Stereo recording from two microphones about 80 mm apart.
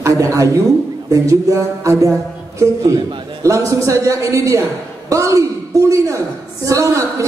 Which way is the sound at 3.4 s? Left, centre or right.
Right.